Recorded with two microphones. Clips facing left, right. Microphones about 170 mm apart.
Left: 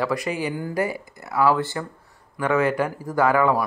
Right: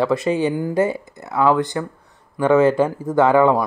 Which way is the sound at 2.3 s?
30° right (ahead or behind).